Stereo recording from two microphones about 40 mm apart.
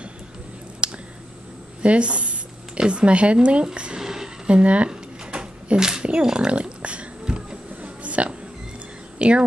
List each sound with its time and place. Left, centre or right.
0.8 s a sound: right
2.8 s speech: right
4.0 s a sound: centre
4.5 s speech: right
4.8 s drawer open or close: right
5.8 s speech: centre
6.2 s music: right
7.8 s a sound: right
9.2 s a woman's voice: right